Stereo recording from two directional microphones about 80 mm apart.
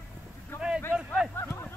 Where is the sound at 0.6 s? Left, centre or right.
Centre.